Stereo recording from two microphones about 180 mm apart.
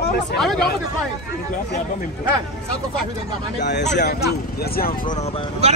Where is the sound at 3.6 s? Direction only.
70° left (ahead or behind).